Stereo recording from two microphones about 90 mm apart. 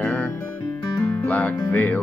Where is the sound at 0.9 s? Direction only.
20° left (ahead or behind).